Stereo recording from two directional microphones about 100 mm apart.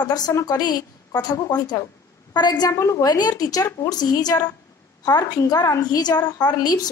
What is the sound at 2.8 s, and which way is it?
A woman's voice, 35° left (ahead or behind).